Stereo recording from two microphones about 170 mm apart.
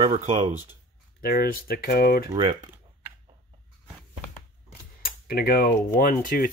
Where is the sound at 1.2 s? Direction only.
65° left (ahead or behind).